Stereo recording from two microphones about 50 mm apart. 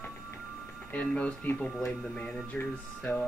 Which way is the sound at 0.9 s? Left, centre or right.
Left.